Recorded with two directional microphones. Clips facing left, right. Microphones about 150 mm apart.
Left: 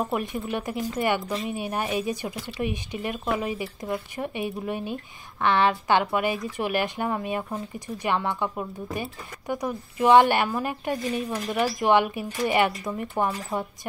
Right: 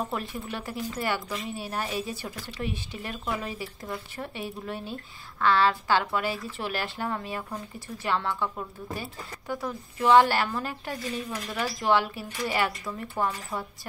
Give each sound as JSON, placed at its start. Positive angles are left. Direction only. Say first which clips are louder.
{"t": 0.0, "sound": "speech", "louder": "left 5 dB", "side_deg": 15}
{"t": 11.2, "sound": "speech", "louder": "left 6 dB", "side_deg": 30}